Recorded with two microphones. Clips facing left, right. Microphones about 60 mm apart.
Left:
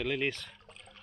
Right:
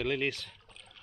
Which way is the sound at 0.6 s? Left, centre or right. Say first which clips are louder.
Left 2 dB; left.